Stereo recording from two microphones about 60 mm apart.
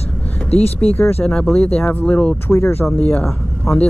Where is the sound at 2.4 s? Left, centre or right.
Left.